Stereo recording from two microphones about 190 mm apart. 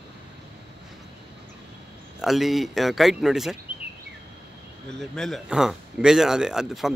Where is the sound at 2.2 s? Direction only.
Centre (ahead or behind).